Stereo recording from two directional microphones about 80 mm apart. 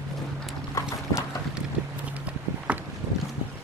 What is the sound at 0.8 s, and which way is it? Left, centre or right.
Clip-clop, centre.